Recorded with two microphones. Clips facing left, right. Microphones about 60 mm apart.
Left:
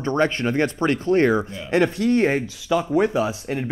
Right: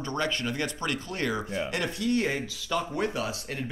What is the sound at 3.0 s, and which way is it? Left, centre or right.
Speech, left.